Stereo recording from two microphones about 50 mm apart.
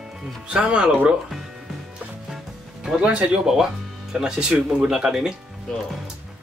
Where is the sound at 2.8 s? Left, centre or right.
Centre.